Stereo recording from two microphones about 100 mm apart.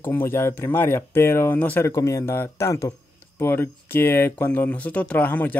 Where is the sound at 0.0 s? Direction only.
20° left (ahead or behind).